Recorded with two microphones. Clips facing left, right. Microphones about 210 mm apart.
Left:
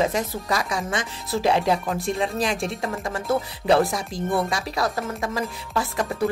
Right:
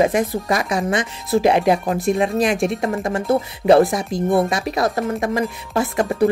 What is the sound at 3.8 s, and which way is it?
A woman's voice, 20° right (ahead or behind).